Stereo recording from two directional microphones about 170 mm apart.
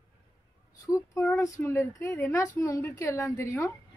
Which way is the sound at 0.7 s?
20° left (ahead or behind).